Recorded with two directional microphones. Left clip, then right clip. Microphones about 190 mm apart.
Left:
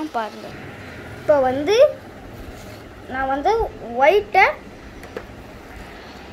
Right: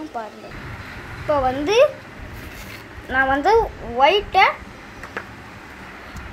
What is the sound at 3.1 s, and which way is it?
Speech, 25° right (ahead or behind).